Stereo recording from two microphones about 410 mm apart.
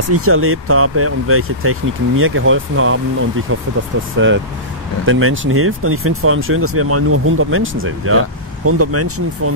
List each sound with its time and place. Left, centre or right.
0.1 s speech: right
5.0 s speech: right